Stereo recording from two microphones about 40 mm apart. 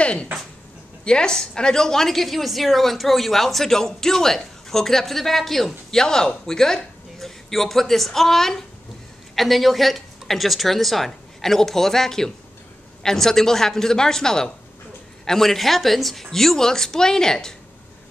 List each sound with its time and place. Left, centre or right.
0.0 s a woman's voice: left; by 5.8 s centre
5.9 s a woman's voice: centre